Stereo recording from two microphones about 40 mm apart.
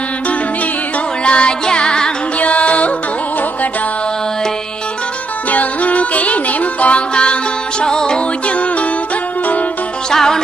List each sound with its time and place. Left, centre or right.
1.2 s music: left
2.4 s music: left
5.5 s music: left
7.8 s music: centre
10.1 s music: centre